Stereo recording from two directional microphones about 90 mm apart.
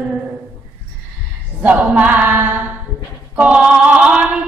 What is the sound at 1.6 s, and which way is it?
A capella, 15° right (ahead or behind).